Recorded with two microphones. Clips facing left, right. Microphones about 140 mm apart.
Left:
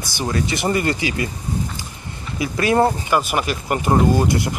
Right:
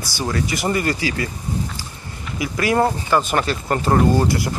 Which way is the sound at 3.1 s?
10° left (ahead or behind).